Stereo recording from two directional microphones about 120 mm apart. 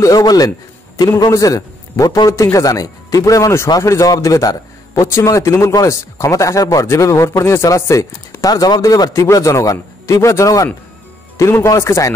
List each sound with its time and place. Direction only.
0.0 s a man's voice: 30° left (ahead or behind)